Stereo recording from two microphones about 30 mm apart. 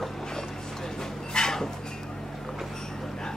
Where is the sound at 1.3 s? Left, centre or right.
Left.